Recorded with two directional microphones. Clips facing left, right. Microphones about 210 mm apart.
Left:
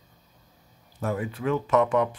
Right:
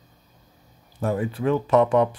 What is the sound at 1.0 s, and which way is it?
Speech, 30° right (ahead or behind).